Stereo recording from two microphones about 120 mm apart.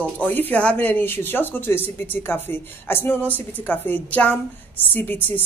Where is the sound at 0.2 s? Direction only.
15° left (ahead or behind).